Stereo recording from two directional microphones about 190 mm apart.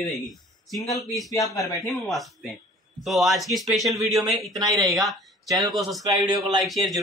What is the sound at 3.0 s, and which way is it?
Speech, centre (ahead or behind).